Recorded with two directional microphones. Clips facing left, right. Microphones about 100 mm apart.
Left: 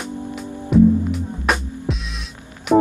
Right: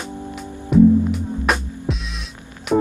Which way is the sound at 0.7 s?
Centre (ahead or behind).